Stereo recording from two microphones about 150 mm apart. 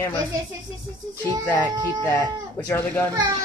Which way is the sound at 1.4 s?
10° left (ahead or behind).